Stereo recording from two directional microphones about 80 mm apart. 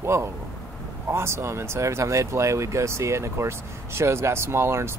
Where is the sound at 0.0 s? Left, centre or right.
Right.